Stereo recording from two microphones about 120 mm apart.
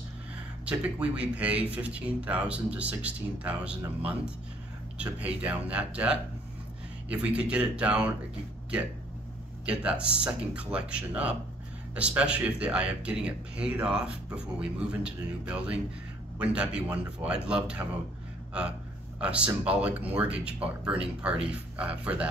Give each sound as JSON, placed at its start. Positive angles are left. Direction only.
{"t": 0.7, "sound": "speech", "side_deg": -10}
{"t": 4.9, "sound": "speech", "side_deg": -10}
{"t": 9.7, "sound": "speech", "side_deg": -10}